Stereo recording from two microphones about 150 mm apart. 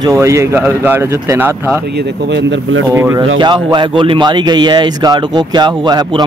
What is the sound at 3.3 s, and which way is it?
A man's voice, 30° right (ahead or behind).